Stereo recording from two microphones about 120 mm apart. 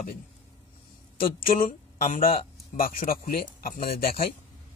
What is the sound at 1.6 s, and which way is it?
Speech, 90° left.